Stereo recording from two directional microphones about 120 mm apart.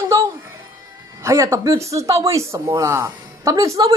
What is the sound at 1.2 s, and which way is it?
Speech, 25° right (ahead or behind).